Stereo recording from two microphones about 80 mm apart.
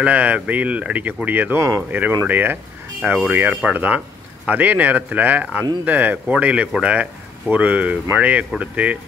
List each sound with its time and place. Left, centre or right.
0.0 s speech: centre